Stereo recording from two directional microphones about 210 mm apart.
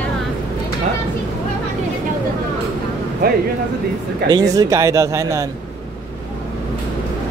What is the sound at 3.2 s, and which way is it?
Speech, 45° right (ahead or behind).